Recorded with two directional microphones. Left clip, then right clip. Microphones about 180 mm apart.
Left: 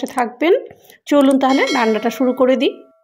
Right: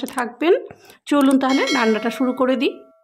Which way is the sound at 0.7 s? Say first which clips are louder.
Left 3 dB; 10° right (ahead or behind).